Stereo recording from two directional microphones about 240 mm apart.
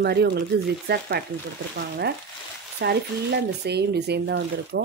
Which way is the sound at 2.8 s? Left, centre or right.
Right.